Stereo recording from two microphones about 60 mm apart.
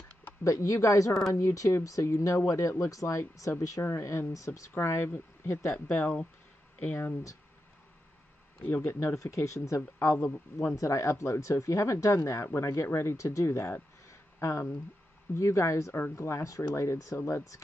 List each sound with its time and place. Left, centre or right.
0.4 s speech: left
3.8 s speech: left
5.9 s speech: left
9.1 s speech: left
9.8 s speech: left
14.0 s a sound: left
15.3 s speech: left